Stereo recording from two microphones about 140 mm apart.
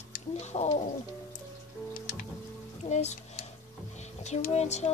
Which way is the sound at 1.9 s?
80° left.